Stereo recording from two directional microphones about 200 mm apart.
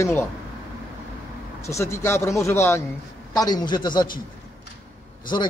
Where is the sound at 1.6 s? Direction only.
15° left (ahead or behind).